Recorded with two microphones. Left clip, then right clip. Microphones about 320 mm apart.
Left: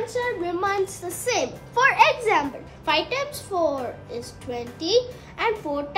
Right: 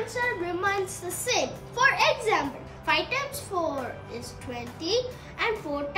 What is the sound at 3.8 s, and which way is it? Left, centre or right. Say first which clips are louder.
Speech: left 3 dB; centre.